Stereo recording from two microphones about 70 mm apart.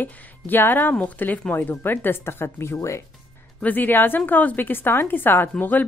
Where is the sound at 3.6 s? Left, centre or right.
Left.